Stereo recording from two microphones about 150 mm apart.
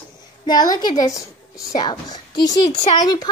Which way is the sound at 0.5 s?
25° left (ahead or behind).